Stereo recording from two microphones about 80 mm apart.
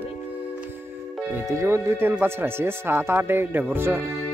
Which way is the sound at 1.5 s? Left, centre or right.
Right.